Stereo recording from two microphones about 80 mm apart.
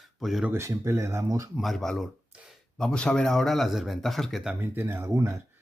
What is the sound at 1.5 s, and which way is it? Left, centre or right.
Speech, centre.